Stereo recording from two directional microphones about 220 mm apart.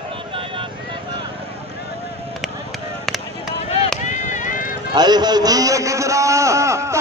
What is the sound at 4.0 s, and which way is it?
Run, 35° left (ahead or behind).